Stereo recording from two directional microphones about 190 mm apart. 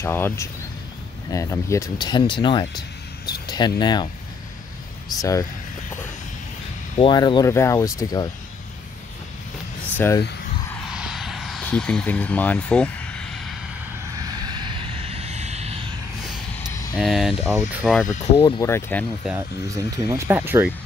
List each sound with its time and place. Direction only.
0.0 s speech: 10° left (ahead or behind)
7.0 s speech: 25° left (ahead or behind)
9.9 s speech: 10° left (ahead or behind)
10.7 s vehicle: centre (ahead or behind)
14.1 s vehicle: 20° right (ahead or behind)
16.9 s speech: centre (ahead or behind)
18.4 s speech: 15° left (ahead or behind)
19.3 s speech: 20° right (ahead or behind)